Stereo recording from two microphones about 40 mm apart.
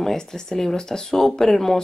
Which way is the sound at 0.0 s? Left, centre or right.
Centre.